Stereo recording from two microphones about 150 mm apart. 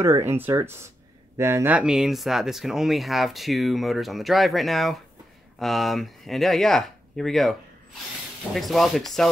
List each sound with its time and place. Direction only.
0.0 s speech: 20° right (ahead or behind); by 7.5 s centre (ahead or behind)
8.5 s speech: centre (ahead or behind)